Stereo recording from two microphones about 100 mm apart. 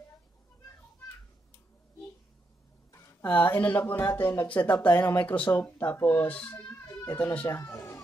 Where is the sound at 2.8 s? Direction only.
30° left (ahead or behind).